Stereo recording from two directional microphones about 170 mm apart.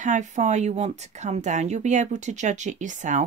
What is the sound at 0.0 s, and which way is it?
Speech, 45° right (ahead or behind).